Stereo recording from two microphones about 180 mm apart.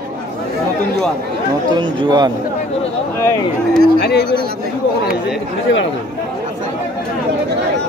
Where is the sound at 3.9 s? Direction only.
65° left (ahead or behind).